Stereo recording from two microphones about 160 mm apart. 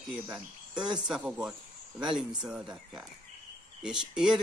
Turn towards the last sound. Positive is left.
turn(degrees=-5)  # may be behind; listen again after turning